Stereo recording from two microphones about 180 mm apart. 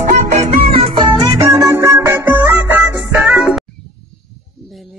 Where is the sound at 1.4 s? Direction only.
15° right (ahead or behind).